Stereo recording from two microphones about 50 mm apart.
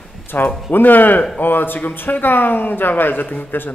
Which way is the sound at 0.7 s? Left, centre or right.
Left.